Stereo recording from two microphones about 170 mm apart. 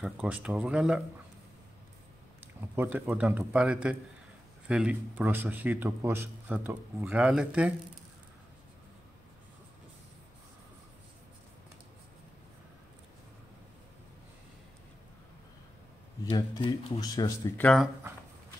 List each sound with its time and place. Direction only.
0.0 s speech: 5° right (ahead or behind)
2.7 s a man's voice: 10° right (ahead or behind)
16.3 s speech: 30° left (ahead or behind)
17.6 s speech: 5° left (ahead or behind)